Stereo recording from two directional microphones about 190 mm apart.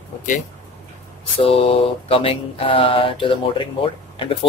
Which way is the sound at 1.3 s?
30° left (ahead or behind).